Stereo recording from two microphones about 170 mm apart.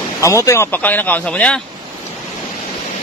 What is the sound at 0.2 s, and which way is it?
Speech, 20° left (ahead or behind).